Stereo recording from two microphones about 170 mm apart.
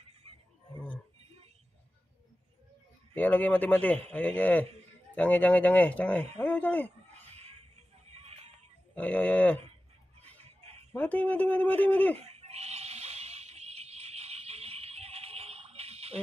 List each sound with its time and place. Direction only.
3.2 s speech: 10° left (ahead or behind)
8.1 s music: 35° right (ahead or behind)
8.9 s speech: 10° left (ahead or behind)
10.9 s speech: 10° left (ahead or behind)
12.2 s a sound: 40° right (ahead or behind)